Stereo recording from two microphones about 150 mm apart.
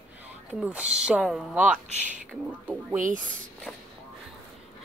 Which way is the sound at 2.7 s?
15° right (ahead or behind).